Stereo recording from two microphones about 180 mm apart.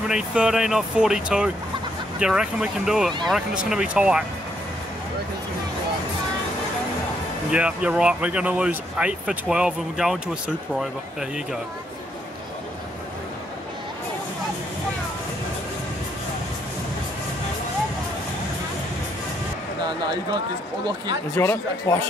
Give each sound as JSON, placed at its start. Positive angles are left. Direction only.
{"t": 0.1, "sound": "speech", "side_deg": -5}
{"t": 7.5, "sound": "speech", "side_deg": -5}
{"t": 19.9, "sound": "speech", "side_deg": -25}
{"t": 21.4, "sound": "speech", "side_deg": 15}